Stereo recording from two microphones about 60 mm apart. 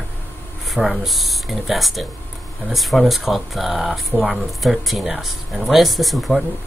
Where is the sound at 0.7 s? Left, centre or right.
Centre.